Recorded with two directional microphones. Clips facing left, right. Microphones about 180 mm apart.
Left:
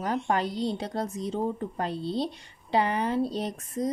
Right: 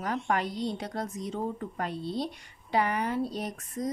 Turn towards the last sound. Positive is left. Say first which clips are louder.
# left 4 dB
turn(degrees=30)  # may be behind; listen again after turning